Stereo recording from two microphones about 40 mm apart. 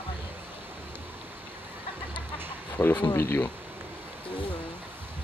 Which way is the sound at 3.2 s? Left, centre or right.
Left.